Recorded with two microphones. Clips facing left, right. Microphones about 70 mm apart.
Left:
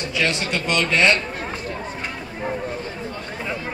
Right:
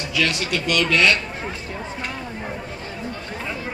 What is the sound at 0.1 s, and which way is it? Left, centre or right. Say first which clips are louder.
A man's voice: right 1 dB; left.